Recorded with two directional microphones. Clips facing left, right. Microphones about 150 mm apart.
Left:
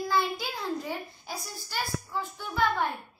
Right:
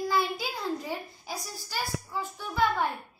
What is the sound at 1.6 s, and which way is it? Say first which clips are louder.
A child's voice: left 1 dB; 5° right (ahead or behind).